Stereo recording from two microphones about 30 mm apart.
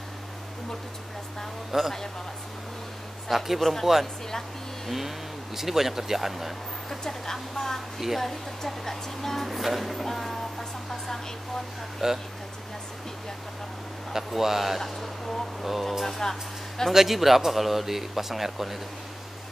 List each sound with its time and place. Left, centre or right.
1.7 s speech: centre
3.3 s speech: centre
4.8 s speech: centre
6.9 s speech: centre
12.0 s speech: centre
14.1 s speech: centre
14.8 s a sound: centre
15.6 s speech: centre
16.1 s speech: centre
16.9 s speech: centre